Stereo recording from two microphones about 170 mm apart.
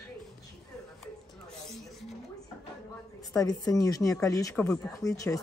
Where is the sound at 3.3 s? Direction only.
20° left (ahead or behind).